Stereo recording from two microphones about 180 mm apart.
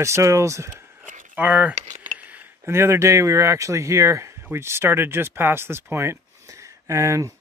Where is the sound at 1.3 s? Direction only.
10° right (ahead or behind).